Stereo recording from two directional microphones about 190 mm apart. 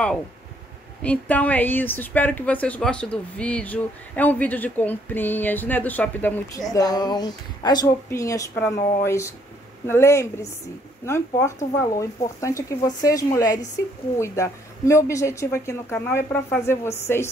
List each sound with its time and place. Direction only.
1.0 s a woman's voice: 5° left (ahead or behind)